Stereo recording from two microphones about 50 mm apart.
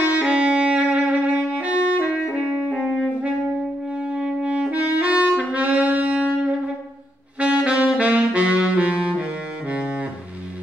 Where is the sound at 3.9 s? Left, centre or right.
Centre.